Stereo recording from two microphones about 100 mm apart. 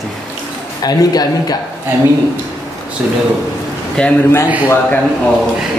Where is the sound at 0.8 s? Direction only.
40° left (ahead or behind).